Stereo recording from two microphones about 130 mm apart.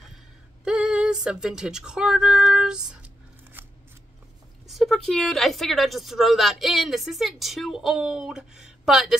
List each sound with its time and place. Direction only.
0.7 s a sound: 5° right (ahead or behind)
3.6 s scissors: 15° right (ahead or behind)
4.6 s a woman's voice: centre (ahead or behind)